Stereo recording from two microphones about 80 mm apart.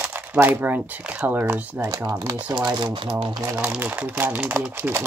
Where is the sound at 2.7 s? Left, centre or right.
Right.